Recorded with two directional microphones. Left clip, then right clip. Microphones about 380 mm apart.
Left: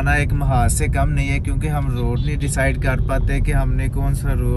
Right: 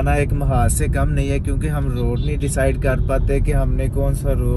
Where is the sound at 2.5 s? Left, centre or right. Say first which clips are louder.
Right 1 dB; centre.